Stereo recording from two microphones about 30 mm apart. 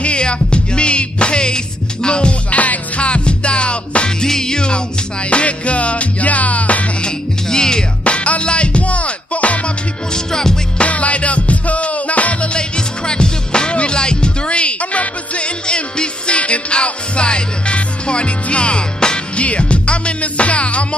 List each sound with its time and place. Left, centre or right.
0.0 s music: left
2.5 s music: left
3.0 s music: left
4.2 s music: centre
5.3 s music: left
7.4 s music: left
8.0 s music: left
10.1 s music: left
10.8 s music: left
12.5 s music: left
19.3 s music: left